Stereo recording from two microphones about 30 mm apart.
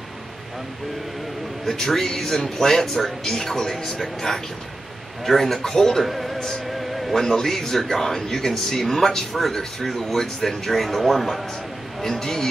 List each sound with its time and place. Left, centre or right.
1.7 s a man's voice: centre
6.0 s speech: centre
6.8 s music: centre
7.2 s speech: centre
10.1 s speech: centre